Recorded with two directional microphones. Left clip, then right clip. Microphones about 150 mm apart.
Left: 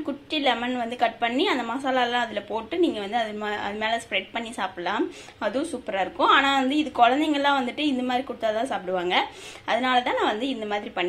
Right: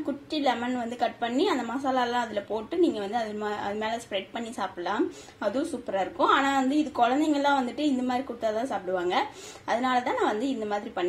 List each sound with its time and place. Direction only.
0.3 s a woman's voice: centre (ahead or behind)